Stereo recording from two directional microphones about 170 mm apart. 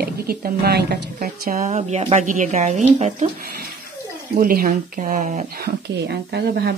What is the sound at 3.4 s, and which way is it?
Speech, 65° right (ahead or behind).